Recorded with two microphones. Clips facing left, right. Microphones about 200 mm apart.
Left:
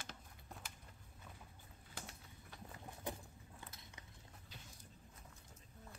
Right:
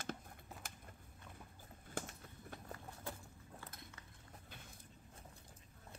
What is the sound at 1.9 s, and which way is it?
Clip-clop, 50° right (ahead or behind).